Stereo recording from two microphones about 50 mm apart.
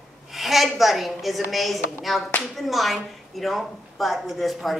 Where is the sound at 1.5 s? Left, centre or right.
Centre.